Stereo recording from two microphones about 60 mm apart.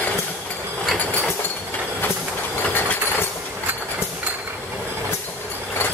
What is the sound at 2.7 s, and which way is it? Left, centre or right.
Vehicle, left.